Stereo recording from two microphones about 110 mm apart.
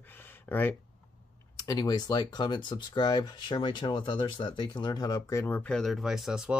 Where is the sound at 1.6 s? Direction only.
35° left (ahead or behind).